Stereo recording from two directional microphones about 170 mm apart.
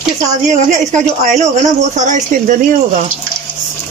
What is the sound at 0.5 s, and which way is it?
Speech, 45° right (ahead or behind).